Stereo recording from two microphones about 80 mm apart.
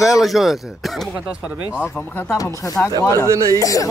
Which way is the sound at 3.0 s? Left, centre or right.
Left.